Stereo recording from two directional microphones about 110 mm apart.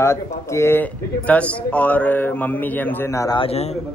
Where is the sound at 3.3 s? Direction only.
65° left (ahead or behind).